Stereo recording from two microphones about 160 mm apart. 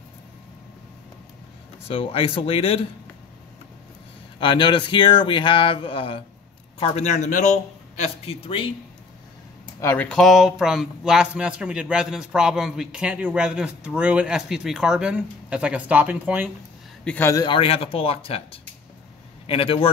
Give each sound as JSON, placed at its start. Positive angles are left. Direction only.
{"t": 1.9, "sound": "speech", "side_deg": 35}
{"t": 4.4, "sound": "speech", "side_deg": 30}
{"t": 6.8, "sound": "a man's voice", "side_deg": 45}
{"t": 8.0, "sound": "speech", "side_deg": 35}
{"t": 9.8, "sound": "speech", "side_deg": 15}
{"t": 17.0, "sound": "a man's voice", "side_deg": 10}
{"t": 17.3, "sound": "speech", "side_deg": 25}